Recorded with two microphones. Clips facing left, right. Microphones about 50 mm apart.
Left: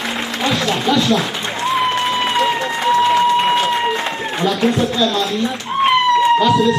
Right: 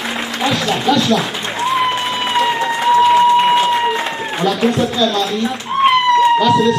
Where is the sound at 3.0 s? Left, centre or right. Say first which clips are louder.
Right 4 dB; centre.